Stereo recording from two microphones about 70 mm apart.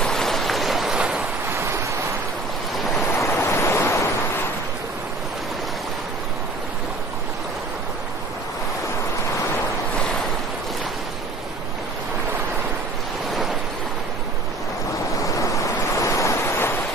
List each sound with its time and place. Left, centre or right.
0.0 s a sound: centre
1.5 s waves: right
3.2 s waves: left
15.2 s waves: left